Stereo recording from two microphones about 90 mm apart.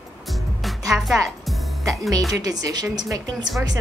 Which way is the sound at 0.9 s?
5° right (ahead or behind).